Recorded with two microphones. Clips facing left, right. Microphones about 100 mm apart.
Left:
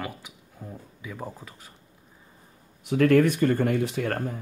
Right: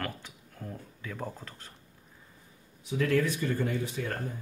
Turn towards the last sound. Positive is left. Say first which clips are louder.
# left 6 dB
turn(degrees=70)  # may be behind; listen again after turning